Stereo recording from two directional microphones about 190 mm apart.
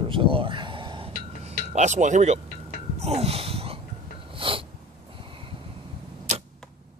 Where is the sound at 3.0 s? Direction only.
35° right (ahead or behind).